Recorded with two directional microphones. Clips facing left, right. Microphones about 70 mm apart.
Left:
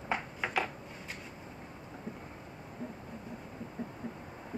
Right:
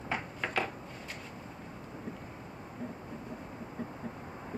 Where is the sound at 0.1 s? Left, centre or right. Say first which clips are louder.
Left 1 dB; centre.